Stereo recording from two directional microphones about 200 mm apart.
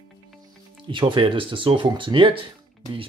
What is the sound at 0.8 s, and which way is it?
Speech, 25° right (ahead or behind).